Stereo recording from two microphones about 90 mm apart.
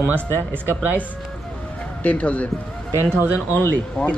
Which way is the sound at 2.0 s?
15° left (ahead or behind).